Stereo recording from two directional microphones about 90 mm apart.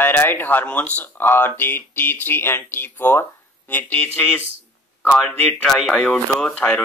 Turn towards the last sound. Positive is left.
turn(degrees=10)  # may be behind; listen again after turning